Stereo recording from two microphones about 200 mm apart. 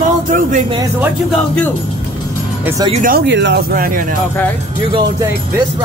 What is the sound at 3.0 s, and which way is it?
Speech, 55° right (ahead or behind).